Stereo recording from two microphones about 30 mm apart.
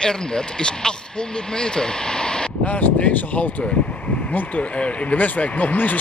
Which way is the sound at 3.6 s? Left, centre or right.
Left.